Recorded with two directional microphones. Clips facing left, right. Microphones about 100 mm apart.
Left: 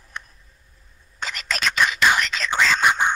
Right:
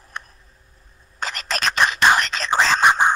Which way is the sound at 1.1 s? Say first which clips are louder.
Right 2 dB; 45° right (ahead or behind).